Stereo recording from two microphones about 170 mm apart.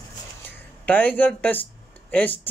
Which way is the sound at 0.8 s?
10° left (ahead or behind).